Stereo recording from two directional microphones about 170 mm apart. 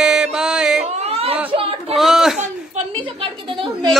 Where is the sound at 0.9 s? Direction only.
35° right (ahead or behind).